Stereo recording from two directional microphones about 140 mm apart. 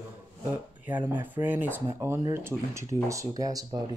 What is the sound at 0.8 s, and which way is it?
Speech, 10° right (ahead or behind).